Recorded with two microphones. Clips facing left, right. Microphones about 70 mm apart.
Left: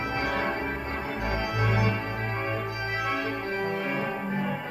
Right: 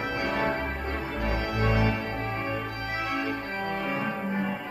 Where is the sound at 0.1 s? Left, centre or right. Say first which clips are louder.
Right 1 dB; left.